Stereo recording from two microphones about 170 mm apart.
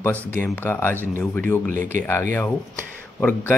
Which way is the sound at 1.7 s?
50° right (ahead or behind).